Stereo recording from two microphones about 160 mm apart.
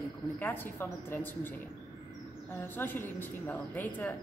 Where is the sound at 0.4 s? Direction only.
10° left (ahead or behind).